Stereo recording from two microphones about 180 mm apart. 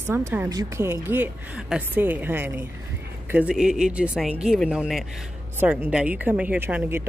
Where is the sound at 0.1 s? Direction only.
15° right (ahead or behind).